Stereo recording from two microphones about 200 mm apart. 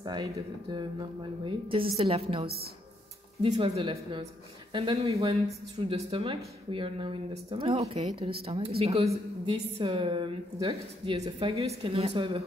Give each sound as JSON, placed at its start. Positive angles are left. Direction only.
{"t": 0.0, "sound": "a woman's voice", "side_deg": -20}
{"t": 3.5, "sound": "a woman's voice", "side_deg": -30}